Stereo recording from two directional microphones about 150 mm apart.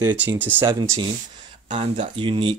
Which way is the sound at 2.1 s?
35° right (ahead or behind).